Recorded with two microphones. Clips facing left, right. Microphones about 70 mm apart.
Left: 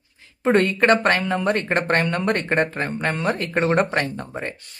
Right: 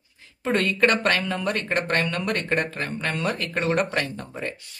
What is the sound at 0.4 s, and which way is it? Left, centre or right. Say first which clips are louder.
Speech: left 4 dB; left.